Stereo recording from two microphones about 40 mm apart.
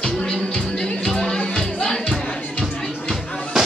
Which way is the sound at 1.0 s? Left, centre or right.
Centre.